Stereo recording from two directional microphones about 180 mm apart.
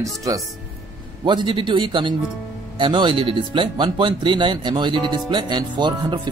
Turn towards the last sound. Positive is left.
turn(degrees=-25)  # may be behind; listen again after turning